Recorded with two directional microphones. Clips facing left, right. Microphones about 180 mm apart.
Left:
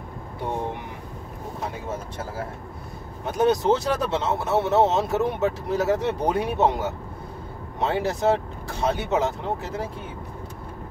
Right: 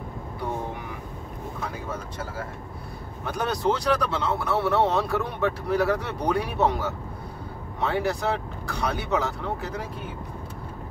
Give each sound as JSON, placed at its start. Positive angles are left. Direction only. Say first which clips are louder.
{"t": 3.3, "sound": "speech", "louder": "left 5 dB", "side_deg": 20}